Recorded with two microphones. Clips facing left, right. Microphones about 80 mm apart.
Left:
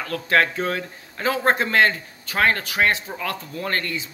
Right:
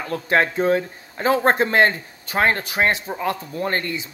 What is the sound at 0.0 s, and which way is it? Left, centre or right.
A man's voice, right.